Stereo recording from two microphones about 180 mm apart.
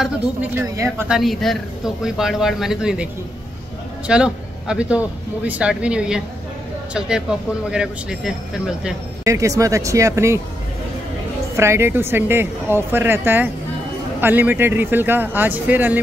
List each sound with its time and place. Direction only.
0.4 s speech: 10° right (ahead or behind)
4.1 s speech: 5° right (ahead or behind)
9.2 s a woman's voice: 15° right (ahead or behind)
11.5 s a woman's voice: 15° right (ahead or behind)